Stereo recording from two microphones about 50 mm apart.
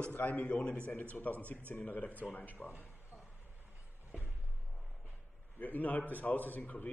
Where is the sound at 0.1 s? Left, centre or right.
Left.